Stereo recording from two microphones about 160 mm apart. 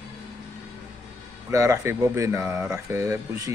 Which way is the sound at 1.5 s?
20° right (ahead or behind).